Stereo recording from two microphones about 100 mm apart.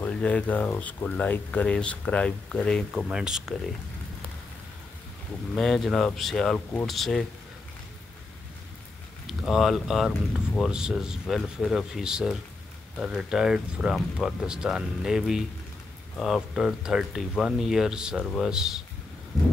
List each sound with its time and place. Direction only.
0.0 s speech: 15° left (ahead or behind)
2.9 s speech: 5° right (ahead or behind)
5.5 s speech: 5° left (ahead or behind)
9.3 s speech: centre (ahead or behind)
18.2 s speech: 5° left (ahead or behind)
18.5 s speech: 5° right (ahead or behind)